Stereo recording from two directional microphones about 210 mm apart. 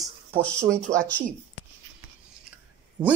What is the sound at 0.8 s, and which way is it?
Speech, 5° left (ahead or behind).